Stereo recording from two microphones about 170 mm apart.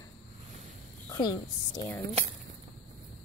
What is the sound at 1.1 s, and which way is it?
Speech, 25° left (ahead or behind).